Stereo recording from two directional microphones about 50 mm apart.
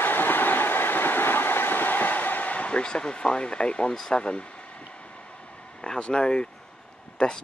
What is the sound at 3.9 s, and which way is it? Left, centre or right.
Speech, centre.